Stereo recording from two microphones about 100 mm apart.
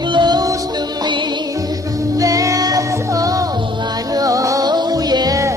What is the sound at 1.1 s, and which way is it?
Music, 50° right (ahead or behind).